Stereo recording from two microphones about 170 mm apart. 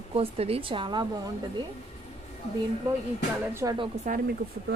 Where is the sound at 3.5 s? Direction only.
15° right (ahead or behind).